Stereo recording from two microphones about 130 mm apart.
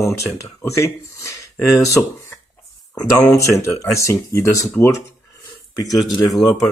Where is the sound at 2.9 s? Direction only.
20° left (ahead or behind).